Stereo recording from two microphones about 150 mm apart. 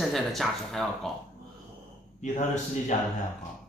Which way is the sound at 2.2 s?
50° left (ahead or behind).